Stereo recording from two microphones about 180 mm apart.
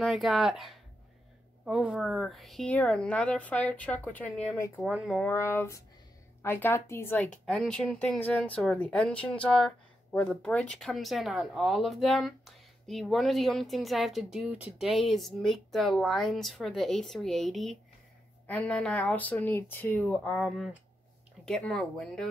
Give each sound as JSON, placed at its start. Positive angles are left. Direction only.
{"t": 0.0, "sound": "speech", "side_deg": 0}
{"t": 4.8, "sound": "speech", "side_deg": -5}
{"t": 5.2, "sound": "speech", "side_deg": 15}